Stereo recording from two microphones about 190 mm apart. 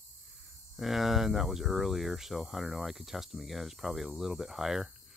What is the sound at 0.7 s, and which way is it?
Speech, centre (ahead or behind).